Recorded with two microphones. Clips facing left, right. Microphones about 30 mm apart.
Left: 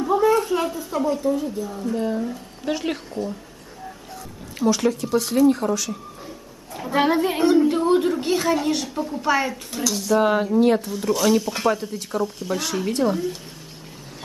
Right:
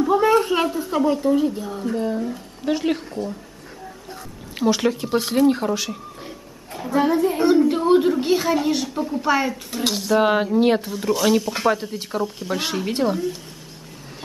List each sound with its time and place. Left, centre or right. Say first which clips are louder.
0.2 s a sound: right 2 dB; right
0.9 s a woman's voice: right 3 dB; right
2.0 s speech: left 1 dB; centre
4.6 s speech: right 1 dB; right
6.9 s a woman's voice: right 1 dB; left
7.4 s a woman's voice: even; centre
10.1 s speech: right 1 dB; right
10.9 s a woman's voice: even; centre
13.1 s speech: right 1 dB; centre